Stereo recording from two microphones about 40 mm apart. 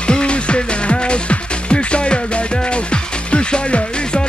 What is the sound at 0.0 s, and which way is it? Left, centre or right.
Music, left.